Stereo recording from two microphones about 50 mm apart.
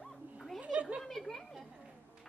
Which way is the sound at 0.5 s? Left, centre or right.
Centre.